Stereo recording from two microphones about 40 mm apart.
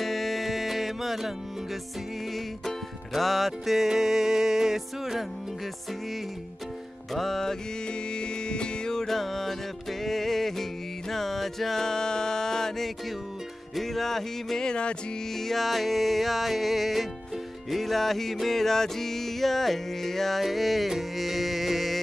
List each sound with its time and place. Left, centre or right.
0.0 s music: centre
2.3 s music: centre
7.2 s music: centre
8.1 s music: left
13.7 s speech: centre
14.7 s music: left
15.3 s music: centre